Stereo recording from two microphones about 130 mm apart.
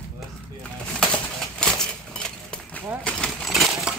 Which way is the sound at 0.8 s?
5° left (ahead or behind).